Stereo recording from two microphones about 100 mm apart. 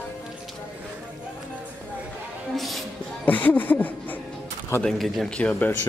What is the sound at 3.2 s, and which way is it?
Music, 15° left (ahead or behind).